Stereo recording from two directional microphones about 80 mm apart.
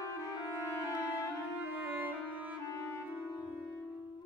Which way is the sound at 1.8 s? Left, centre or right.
Right.